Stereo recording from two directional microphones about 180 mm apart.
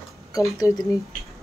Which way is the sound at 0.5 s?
20° left (ahead or behind).